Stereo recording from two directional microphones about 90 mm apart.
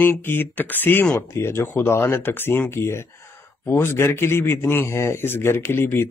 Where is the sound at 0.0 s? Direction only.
25° left (ahead or behind).